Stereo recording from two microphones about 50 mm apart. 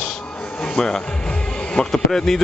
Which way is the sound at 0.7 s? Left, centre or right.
Centre.